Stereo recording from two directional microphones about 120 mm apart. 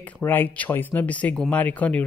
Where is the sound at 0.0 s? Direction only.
15° left (ahead or behind).